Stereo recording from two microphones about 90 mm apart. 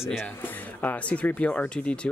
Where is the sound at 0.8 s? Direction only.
15° left (ahead or behind).